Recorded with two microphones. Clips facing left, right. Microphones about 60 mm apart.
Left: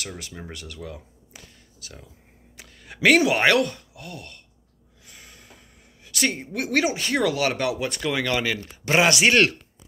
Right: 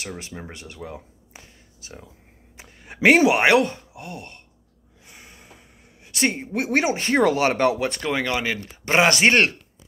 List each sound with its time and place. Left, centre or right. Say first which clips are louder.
0.0 s speech: right 2 dB; right
5.0 s a sound: right 2 dB; right
6.0 s speech: right 2 dB; right